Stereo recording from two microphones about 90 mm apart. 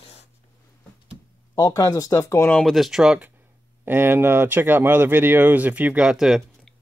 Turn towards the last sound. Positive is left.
turn(degrees=-5)  # may be behind; listen again after turning